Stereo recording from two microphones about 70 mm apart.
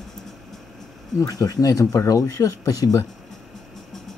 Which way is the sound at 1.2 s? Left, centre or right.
Left.